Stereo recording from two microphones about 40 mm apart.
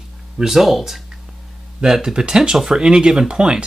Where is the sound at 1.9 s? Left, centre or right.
Centre.